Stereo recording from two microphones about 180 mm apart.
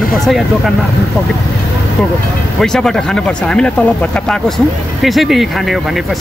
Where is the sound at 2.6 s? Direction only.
5° left (ahead or behind).